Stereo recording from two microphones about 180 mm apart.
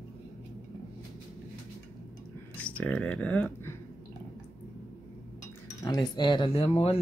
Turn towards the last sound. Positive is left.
turn(degrees=35)  # may be behind; listen again after turning